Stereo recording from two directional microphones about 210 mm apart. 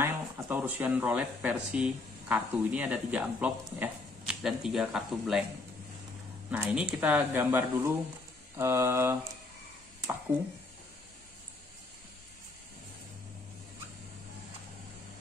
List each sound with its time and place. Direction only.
0.0 s speech: 10° right (ahead or behind)
6.5 s speech: 5° right (ahead or behind)